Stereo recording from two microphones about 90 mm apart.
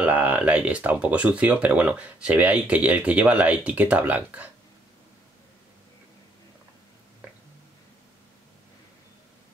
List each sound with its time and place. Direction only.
0.0 s speech: 15° right (ahead or behind)